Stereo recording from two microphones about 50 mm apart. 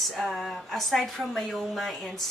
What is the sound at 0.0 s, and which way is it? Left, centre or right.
Speech, centre.